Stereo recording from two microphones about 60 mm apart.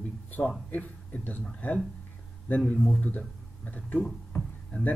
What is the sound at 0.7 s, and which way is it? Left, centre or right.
Speech, left.